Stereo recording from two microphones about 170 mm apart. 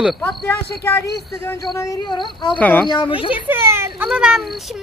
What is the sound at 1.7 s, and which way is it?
Speech, 20° left (ahead or behind).